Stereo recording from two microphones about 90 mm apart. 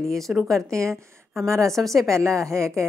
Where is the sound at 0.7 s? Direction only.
35° right (ahead or behind).